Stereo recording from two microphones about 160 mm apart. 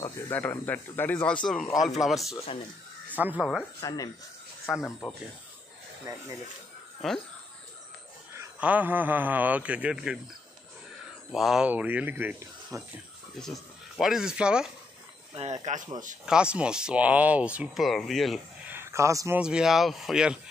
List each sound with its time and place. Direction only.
0.0 s speech: 15° left (ahead or behind); by 3.4 s 10° right (ahead or behind)
3.8 s speech: 25° left (ahead or behind)
4.7 s speech: centre (ahead or behind)
6.1 s speech: 20° right (ahead or behind)
7.0 s speech: centre (ahead or behind)
8.5 s speech: 10° right (ahead or behind)
11.3 s speech: centre (ahead or behind)
13.4 s speech: centre (ahead or behind)
15.7 s speech: 50° right (ahead or behind)
16.3 s speech: 5° right (ahead or behind)
18.7 s speech: 15° right (ahead or behind)
19.4 s speech: 5° right (ahead or behind)